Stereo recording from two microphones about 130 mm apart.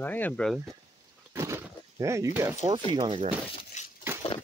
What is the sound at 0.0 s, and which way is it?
Speech, 15° left (ahead or behind).